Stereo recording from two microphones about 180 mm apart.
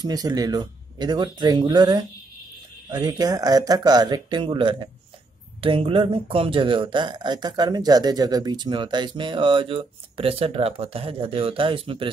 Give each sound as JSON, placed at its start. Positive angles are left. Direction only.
{"t": 0.0, "sound": "speech", "side_deg": -20}